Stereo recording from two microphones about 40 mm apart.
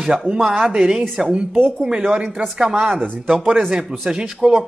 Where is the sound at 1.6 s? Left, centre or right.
Right.